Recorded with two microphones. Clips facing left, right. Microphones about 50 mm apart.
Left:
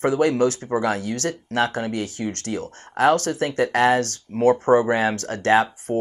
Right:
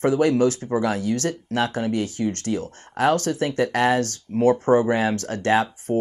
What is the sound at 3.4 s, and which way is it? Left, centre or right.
Speech, left.